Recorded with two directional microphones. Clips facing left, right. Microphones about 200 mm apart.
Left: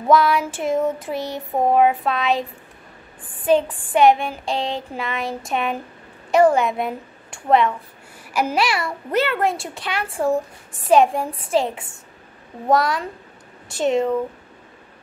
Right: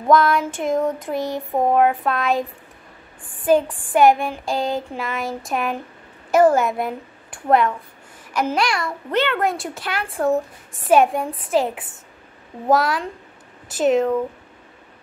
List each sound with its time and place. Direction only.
0.0 s a child's voice: 5° left (ahead or behind)